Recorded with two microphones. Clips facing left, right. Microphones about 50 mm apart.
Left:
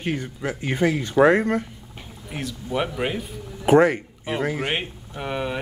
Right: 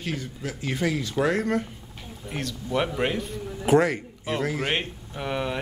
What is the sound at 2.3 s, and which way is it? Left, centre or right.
A man's voice, centre.